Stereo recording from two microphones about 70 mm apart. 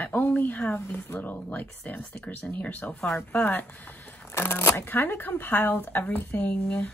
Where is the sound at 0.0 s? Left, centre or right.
Left.